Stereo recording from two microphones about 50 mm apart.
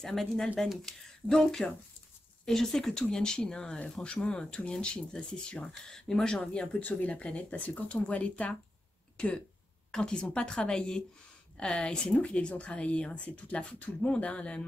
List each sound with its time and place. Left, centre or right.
0.0 s speech: centre
6.8 s speech: left
9.1 s a sound: left
9.8 s speech: centre